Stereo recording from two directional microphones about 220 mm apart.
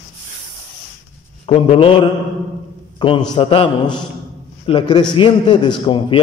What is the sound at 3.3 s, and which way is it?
A man's voice, 25° left (ahead or behind).